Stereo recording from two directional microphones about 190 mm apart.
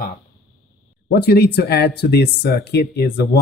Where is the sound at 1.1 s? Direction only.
55° left (ahead or behind).